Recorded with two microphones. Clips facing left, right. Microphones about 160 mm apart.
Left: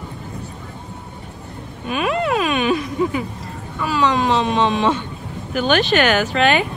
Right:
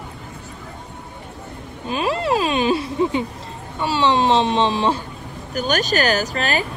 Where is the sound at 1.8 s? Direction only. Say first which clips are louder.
Left 1 dB; 30° right (ahead or behind).